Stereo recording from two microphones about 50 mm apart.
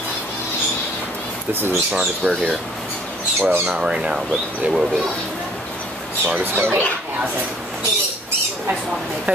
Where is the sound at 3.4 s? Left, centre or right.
Right.